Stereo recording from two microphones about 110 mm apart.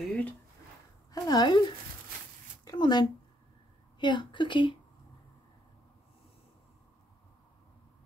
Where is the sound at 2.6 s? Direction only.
45° left (ahead or behind).